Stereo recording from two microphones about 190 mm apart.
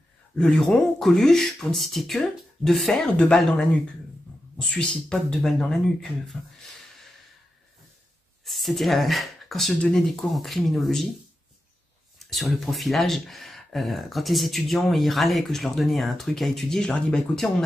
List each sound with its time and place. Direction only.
0.4 s speech: 5° left (ahead or behind)
8.5 s speech: centre (ahead or behind)
12.2 s speech: centre (ahead or behind)